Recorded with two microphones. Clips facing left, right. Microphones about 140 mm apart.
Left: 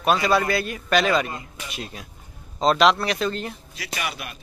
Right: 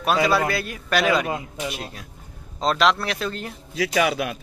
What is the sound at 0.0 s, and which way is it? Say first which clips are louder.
A man's voice: even; 5° right (ahead or behind).